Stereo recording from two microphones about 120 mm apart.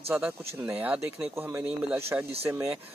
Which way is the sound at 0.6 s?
15° right (ahead or behind).